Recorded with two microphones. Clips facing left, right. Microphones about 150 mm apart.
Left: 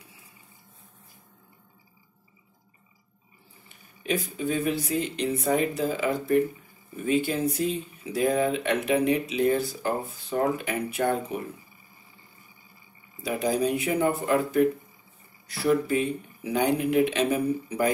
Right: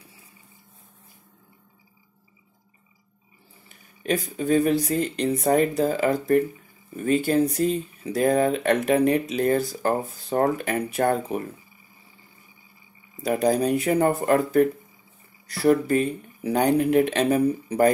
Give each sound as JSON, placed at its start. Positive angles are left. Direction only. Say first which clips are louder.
{"t": 3.6, "sound": "speech", "louder": "right 3 dB", "side_deg": -40}
{"t": 13.2, "sound": "speech", "louder": "right 4 dB", "side_deg": -45}